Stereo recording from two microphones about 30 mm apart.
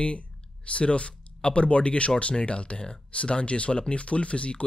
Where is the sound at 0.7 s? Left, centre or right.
Left.